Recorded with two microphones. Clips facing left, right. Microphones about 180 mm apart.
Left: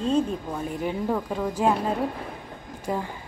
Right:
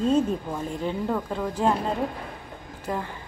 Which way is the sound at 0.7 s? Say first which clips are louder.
Left 1 dB; 10° left (ahead or behind).